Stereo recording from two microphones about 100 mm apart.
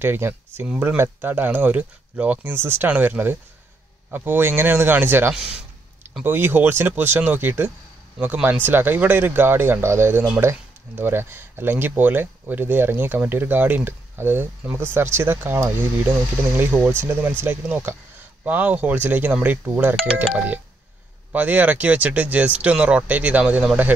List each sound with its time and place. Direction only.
0.0 s speech: 20° right (ahead or behind)
21.3 s speech: 15° right (ahead or behind)